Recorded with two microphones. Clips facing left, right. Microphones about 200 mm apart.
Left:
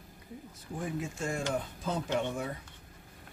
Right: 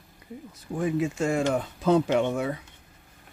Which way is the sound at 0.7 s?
90° right.